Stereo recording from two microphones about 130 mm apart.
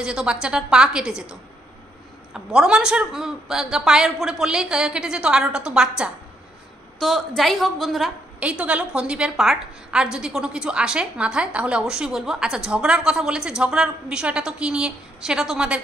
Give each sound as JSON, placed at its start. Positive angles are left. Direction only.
{"t": 0.0, "sound": "a woman's voice", "side_deg": -5}
{"t": 2.3, "sound": "a woman's voice", "side_deg": -5}